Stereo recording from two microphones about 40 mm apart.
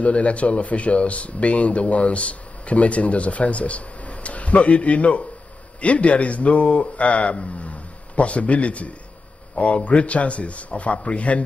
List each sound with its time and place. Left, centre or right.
0.0 s speech: left